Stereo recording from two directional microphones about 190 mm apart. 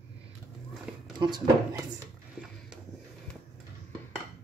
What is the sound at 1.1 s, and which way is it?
Speech, 20° right (ahead or behind).